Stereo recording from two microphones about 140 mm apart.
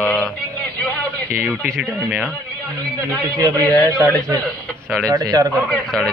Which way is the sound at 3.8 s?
25° right (ahead or behind).